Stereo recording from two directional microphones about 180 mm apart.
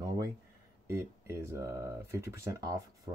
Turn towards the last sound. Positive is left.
turn(degrees=-15)  # may be behind; listen again after turning